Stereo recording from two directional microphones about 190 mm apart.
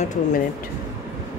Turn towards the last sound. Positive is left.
turn(degrees=40)  # may be behind; listen again after turning